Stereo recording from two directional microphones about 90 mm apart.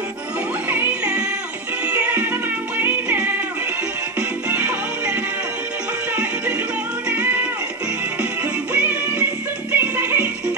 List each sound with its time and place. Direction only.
0.7 s music: 20° right (ahead or behind)
4.5 s music: 20° right (ahead or behind)
7.1 s music: 20° right (ahead or behind)
8.7 s music: 20° right (ahead or behind)